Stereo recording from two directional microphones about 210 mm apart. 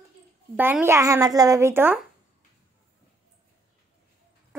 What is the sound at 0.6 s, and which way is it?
Speech, 10° right (ahead or behind).